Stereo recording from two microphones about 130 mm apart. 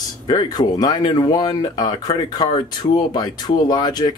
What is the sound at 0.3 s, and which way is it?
Speech, 30° left (ahead or behind).